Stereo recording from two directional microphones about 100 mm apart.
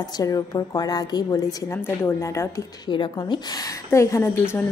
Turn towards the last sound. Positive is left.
turn(degrees=25)  # may be behind; listen again after turning